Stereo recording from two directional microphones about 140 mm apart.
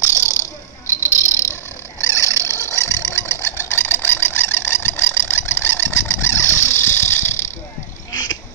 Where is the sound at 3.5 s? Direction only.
15° left (ahead or behind).